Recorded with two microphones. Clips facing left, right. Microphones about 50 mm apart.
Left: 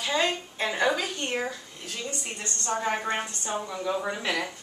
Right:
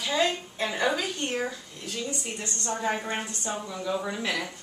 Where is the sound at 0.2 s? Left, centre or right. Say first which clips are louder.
Right 1 dB; left.